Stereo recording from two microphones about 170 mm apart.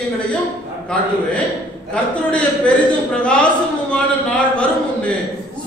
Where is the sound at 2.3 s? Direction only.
5° left (ahead or behind).